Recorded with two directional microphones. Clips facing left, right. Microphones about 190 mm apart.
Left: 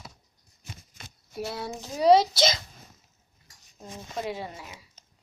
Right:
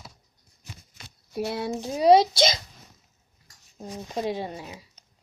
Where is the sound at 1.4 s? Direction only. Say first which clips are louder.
Right 6 dB; 20° right (ahead or behind).